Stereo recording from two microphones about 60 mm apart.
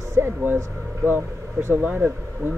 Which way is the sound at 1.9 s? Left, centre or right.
Right.